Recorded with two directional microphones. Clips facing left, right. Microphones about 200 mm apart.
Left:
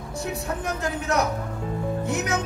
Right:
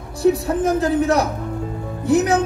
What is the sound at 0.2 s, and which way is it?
Speech, 35° right (ahead or behind).